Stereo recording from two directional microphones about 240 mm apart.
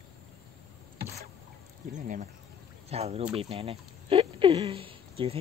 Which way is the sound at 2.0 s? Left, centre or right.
Right.